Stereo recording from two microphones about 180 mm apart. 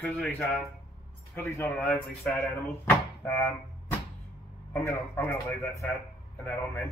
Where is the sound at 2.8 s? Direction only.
10° left (ahead or behind).